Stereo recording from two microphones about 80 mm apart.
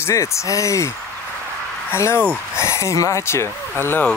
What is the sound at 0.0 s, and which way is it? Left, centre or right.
Speech, left.